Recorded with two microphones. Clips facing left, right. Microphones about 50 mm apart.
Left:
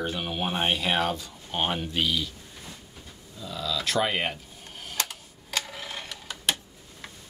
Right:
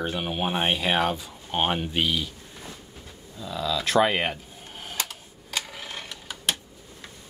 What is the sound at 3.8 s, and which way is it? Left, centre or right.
Speech, right.